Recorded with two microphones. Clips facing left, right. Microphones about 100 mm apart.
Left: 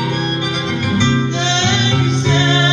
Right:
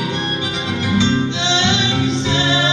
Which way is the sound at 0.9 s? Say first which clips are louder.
Even; 55° left (ahead or behind).